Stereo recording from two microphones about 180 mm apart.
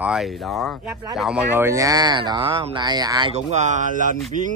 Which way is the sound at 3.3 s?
40° right (ahead or behind).